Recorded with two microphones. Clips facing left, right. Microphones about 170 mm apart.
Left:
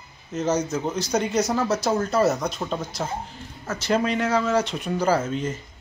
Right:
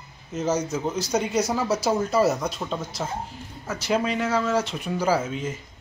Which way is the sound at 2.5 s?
10° left (ahead or behind).